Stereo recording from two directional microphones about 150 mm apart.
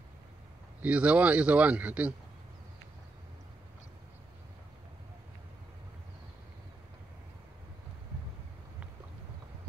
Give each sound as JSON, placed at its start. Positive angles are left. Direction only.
{"t": 0.8, "sound": "a man's voice", "side_deg": -10}